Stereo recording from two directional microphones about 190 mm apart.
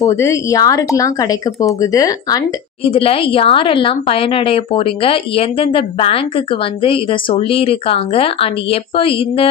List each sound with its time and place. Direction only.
0.0 s a woman's voice: 15° left (ahead or behind)